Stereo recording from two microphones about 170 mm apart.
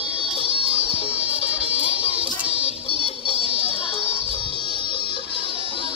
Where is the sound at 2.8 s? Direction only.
35° left (ahead or behind).